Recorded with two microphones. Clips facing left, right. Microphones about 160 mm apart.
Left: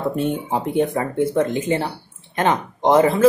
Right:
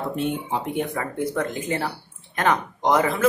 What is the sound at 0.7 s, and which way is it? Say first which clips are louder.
A woman's voice: left 7 dB; 30° left (ahead or behind).